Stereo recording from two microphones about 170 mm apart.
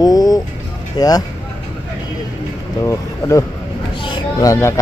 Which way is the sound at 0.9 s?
20° left (ahead or behind).